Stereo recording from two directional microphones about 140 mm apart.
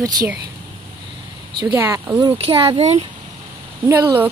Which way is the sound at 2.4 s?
40° right (ahead or behind).